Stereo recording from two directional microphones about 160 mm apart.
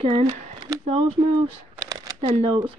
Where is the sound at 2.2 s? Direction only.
35° right (ahead or behind).